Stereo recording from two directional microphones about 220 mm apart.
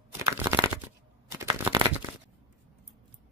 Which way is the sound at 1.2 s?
15° right (ahead or behind).